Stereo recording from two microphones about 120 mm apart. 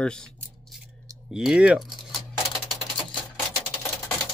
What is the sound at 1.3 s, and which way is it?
Speech, 5° right (ahead or behind).